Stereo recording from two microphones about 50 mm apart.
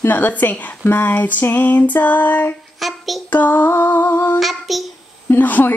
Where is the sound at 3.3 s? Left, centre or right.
Left.